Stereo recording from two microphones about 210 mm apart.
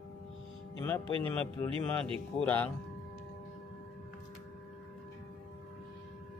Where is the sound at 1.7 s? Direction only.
25° right (ahead or behind).